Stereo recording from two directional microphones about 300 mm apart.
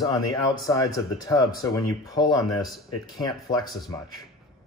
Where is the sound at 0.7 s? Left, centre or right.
Centre.